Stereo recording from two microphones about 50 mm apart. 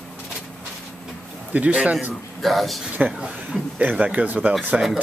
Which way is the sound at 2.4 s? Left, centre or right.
Centre.